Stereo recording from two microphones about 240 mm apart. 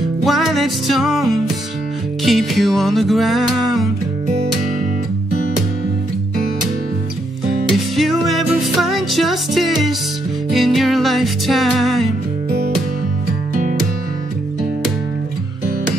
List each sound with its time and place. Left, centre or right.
0.2 s music: centre
7.7 s music: centre
12.4 s music: right